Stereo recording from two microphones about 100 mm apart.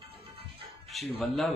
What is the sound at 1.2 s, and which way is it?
Speech, centre (ahead or behind).